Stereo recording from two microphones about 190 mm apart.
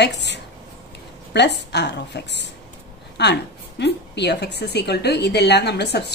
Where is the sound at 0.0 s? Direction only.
65° left (ahead or behind).